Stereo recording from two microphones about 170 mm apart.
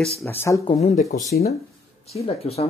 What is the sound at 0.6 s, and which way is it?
Speech, 40° left (ahead or behind).